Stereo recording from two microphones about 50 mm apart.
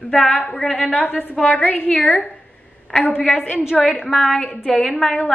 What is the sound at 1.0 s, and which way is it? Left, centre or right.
A woman's voice, left.